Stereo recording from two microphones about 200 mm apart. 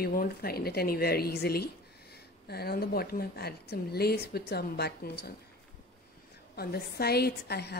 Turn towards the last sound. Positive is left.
turn(degrees=55)  # may be behind; listen again after turning